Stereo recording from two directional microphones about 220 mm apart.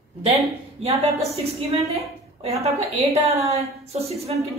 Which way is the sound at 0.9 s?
25° right (ahead or behind).